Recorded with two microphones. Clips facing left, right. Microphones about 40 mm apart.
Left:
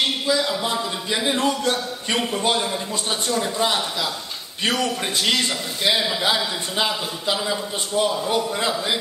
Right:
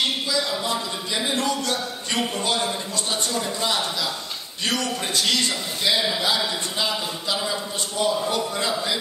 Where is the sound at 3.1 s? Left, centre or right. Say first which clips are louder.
Left 3 dB; left; by 6.1 s centre.